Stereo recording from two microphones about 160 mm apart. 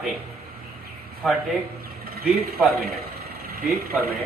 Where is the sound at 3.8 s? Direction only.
70° right (ahead or behind).